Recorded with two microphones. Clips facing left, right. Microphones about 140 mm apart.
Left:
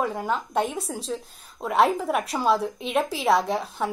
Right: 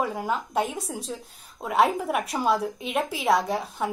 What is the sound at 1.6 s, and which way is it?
A woman's voice, 5° right (ahead or behind).